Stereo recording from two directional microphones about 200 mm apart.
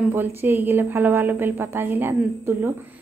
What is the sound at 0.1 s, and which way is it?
A woman's voice, 10° right (ahead or behind).